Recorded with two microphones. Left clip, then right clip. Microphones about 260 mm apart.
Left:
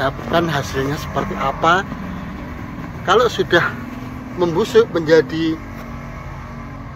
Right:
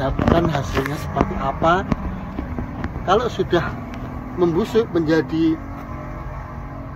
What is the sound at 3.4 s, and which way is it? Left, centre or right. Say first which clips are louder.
Speech: left 5 dB; left.